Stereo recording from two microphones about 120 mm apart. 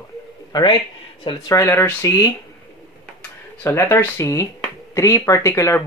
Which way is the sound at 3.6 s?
20° left (ahead or behind).